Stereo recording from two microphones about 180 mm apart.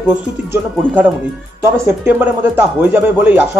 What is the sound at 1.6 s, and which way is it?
Speech, 10° right (ahead or behind).